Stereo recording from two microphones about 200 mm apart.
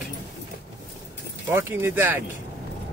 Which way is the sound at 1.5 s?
10° right (ahead or behind).